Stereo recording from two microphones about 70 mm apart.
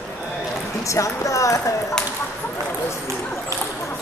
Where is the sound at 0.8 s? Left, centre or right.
Left.